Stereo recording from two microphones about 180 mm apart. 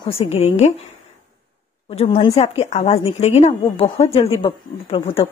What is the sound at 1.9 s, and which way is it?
A woman's voice, 35° left (ahead or behind).